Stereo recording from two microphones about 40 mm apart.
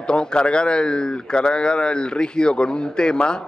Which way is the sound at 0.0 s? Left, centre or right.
Left.